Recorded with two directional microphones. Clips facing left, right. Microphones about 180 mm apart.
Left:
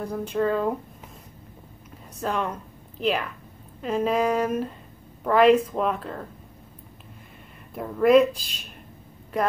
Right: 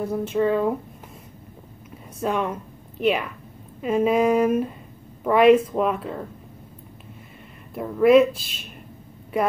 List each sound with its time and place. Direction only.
0.0 s speech: 5° right (ahead or behind)
2.2 s speech: 5° right (ahead or behind)
7.7 s speech: centre (ahead or behind)